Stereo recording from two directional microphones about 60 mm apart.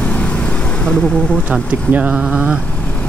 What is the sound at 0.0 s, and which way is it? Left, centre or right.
Vehicle, left.